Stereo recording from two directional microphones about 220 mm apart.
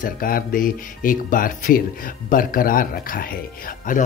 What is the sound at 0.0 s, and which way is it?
Speech, 40° left (ahead or behind).